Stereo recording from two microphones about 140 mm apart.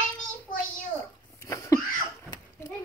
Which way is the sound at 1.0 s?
20° left (ahead or behind).